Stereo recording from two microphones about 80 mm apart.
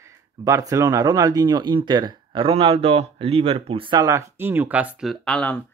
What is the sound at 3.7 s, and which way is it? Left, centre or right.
Speech, right.